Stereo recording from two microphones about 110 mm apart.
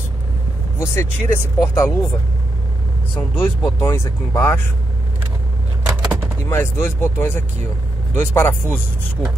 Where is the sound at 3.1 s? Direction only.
20° left (ahead or behind).